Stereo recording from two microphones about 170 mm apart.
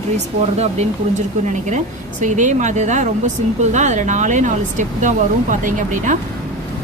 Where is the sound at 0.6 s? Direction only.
40° right (ahead or behind).